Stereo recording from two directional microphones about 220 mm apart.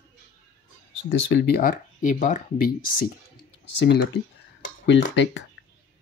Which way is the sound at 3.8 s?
50° left (ahead or behind).